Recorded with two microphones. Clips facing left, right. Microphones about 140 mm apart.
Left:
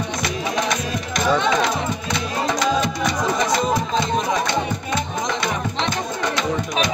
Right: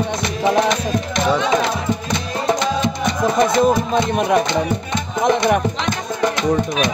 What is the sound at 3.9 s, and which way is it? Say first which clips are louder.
Music: right 4 dB; 60° right (ahead or behind).